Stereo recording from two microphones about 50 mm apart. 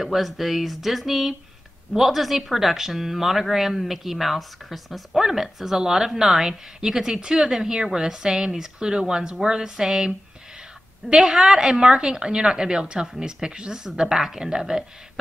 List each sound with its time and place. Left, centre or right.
0.0 s speech: centre